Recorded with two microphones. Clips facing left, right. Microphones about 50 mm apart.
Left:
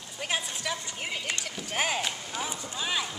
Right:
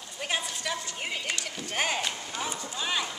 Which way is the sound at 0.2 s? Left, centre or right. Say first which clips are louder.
Even; centre.